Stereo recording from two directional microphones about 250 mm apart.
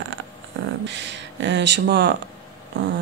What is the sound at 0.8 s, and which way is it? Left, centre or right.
A woman's voice, right.